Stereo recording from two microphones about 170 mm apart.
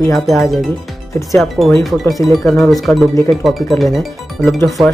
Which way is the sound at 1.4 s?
Centre (ahead or behind).